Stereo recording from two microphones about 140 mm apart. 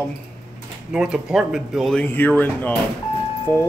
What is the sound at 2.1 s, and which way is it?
Speech, 15° left (ahead or behind).